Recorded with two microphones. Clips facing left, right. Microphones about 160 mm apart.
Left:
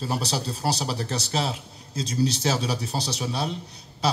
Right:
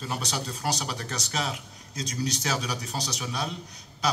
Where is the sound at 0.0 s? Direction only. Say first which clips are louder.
Left 5 dB; 30° left (ahead or behind).